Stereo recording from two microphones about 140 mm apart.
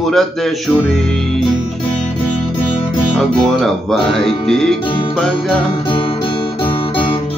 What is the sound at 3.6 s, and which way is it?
Speech, 5° left (ahead or behind).